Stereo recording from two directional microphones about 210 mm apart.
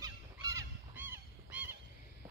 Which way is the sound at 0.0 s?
15° right (ahead or behind).